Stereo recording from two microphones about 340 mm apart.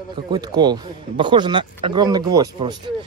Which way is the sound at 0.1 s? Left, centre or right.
Centre.